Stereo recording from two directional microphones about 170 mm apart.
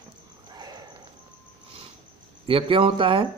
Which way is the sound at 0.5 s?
25° right (ahead or behind).